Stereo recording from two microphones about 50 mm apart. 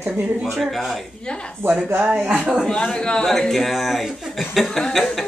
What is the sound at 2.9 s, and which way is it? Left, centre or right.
A man's voice, centre.